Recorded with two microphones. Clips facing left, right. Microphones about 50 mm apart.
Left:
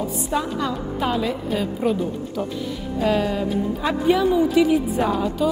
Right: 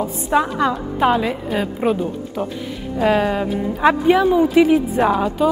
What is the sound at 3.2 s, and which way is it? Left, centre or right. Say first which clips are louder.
A woman's voice: right 3 dB; right.